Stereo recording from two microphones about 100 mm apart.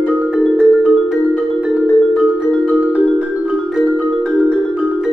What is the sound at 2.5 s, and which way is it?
Music, 5° left (ahead or behind).